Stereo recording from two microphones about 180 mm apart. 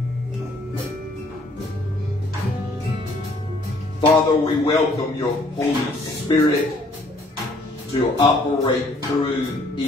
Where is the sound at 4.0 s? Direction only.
30° left (ahead or behind).